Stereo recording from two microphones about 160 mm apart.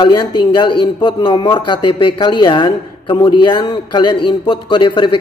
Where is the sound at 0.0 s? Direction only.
30° left (ahead or behind).